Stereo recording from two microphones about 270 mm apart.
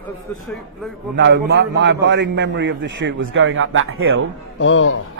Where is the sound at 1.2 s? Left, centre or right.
Right.